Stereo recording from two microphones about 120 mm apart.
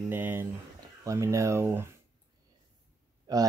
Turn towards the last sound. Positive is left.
turn(degrees=-30)  # may be behind; listen again after turning